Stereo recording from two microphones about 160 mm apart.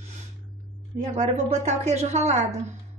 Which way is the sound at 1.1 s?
45° right (ahead or behind).